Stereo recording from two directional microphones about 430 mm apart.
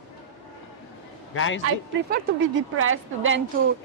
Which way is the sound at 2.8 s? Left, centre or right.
Right.